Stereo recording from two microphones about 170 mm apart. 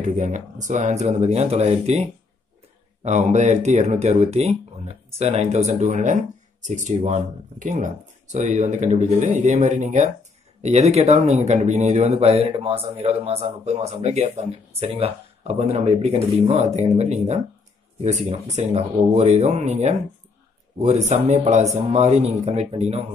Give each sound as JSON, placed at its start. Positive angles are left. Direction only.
{"t": 0.0, "sound": "speech", "side_deg": -45}